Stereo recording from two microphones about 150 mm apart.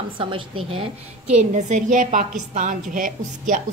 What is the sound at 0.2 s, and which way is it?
Speech, 35° right (ahead or behind).